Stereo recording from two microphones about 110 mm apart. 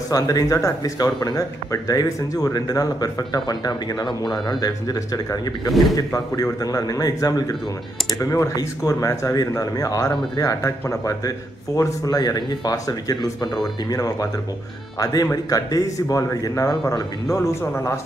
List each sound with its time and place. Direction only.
0.1 s speech: 35° left (ahead or behind)
5.7 s a man's voice: centre (ahead or behind)
5.9 s speech: 30° left (ahead or behind)
15.5 s a man's voice: 35° left (ahead or behind)